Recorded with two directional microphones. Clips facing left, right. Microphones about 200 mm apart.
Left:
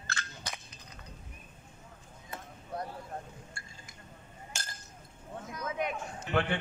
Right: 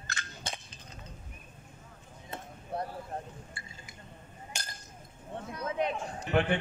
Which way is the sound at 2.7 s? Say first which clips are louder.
Right 3 dB; 30° right (ahead or behind).